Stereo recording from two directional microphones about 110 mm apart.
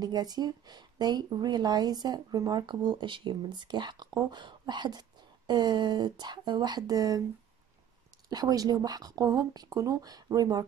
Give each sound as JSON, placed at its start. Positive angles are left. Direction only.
{"t": 0.0, "sound": "speech", "side_deg": -40}
{"t": 8.3, "sound": "speech", "side_deg": -35}